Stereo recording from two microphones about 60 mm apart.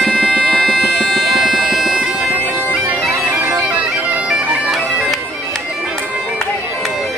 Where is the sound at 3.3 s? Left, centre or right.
Right.